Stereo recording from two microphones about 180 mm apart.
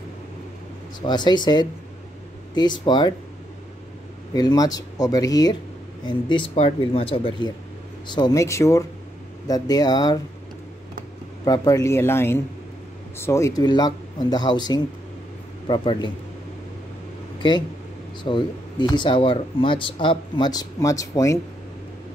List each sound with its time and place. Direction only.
1.0 s speech: 25° left (ahead or behind)
4.3 s speech: 20° left (ahead or behind)
11.4 s speech: 20° left (ahead or behind)
17.4 s speech: 25° left (ahead or behind)